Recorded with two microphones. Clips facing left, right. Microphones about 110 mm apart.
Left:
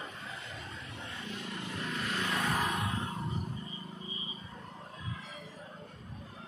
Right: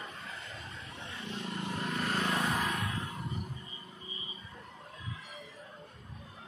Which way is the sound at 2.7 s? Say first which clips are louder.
Left 1 dB; 25° left (ahead or behind).